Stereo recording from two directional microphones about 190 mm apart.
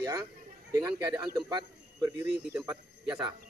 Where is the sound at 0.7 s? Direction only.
20° right (ahead or behind).